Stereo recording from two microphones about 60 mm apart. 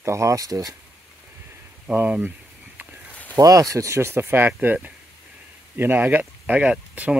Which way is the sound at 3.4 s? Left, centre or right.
Right.